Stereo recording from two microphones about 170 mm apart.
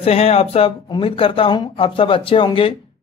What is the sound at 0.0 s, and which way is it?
Speech, 35° left (ahead or behind).